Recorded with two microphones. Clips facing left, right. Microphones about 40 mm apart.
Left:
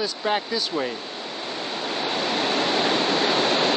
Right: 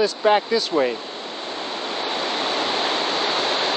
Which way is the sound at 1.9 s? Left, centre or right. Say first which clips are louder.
Even; centre.